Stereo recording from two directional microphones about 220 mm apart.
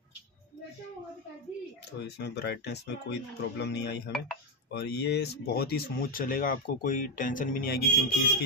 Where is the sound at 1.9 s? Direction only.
50° left (ahead or behind).